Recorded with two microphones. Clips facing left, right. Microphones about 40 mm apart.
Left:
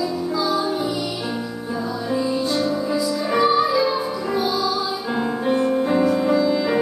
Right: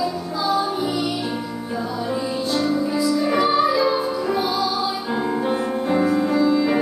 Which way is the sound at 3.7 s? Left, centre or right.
Right.